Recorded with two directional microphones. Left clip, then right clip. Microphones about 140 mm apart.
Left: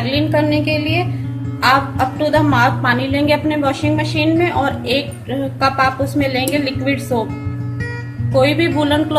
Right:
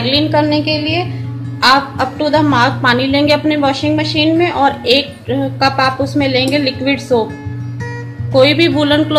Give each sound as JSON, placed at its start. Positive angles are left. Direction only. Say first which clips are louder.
{"t": 0.0, "sound": "a woman's voice", "louder": "right 4 dB", "side_deg": -40}
{"t": 8.3, "sound": "speech", "louder": "right 4 dB", "side_deg": -45}